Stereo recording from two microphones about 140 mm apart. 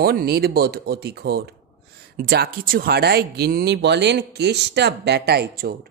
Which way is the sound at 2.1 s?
90° right.